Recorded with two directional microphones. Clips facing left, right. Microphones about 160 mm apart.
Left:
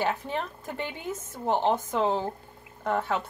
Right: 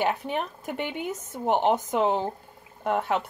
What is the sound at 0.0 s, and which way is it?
Speech, 15° right (ahead or behind).